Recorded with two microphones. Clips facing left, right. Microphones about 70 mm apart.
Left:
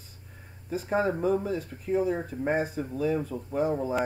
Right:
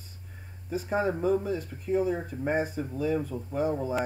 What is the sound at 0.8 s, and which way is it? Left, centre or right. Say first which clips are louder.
Speech: left 1 dB; centre.